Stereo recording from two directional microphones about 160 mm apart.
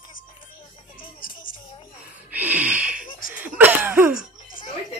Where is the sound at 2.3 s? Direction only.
10° right (ahead or behind).